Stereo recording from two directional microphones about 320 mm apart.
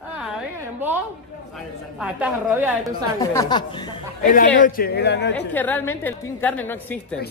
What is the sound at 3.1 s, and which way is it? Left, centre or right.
Speech, centre.